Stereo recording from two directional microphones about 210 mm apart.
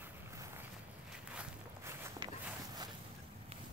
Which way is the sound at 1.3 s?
10° right (ahead or behind).